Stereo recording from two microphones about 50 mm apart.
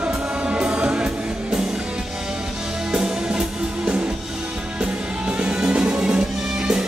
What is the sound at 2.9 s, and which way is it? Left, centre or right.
Music, centre.